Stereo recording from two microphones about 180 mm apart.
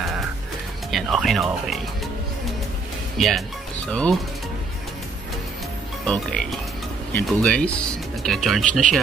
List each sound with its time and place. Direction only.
0.9 s speech: centre (ahead or behind)
3.2 s speech: centre (ahead or behind)
6.0 s speech: 5° left (ahead or behind)